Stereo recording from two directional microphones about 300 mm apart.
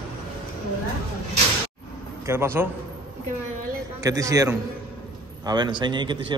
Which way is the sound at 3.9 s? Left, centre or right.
Centre.